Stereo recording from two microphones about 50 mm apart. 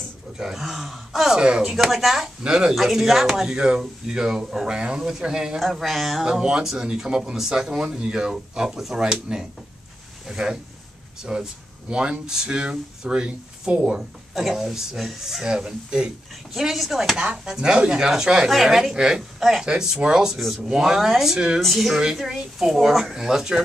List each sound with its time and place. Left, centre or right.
0.4 s speech: centre
1.3 s speech: centre
2.4 s speech: centre
2.7 s speech: centre
5.6 s speech: centre
6.4 s speech: centre
14.3 s speech: centre
16.5 s speech: centre
17.5 s speech: centre
18.9 s speech: centre
20.3 s speech: centre